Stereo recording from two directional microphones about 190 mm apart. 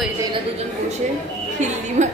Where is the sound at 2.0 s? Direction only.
35° right (ahead or behind).